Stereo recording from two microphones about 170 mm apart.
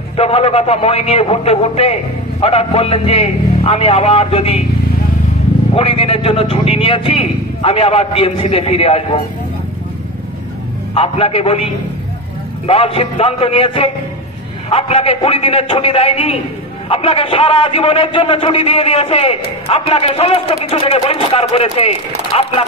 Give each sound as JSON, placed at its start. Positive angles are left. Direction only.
{"t": 0.1, "sound": "a man's voice", "side_deg": 35}
{"t": 5.8, "sound": "a man's voice", "side_deg": 35}
{"t": 11.0, "sound": "a man's voice", "side_deg": 35}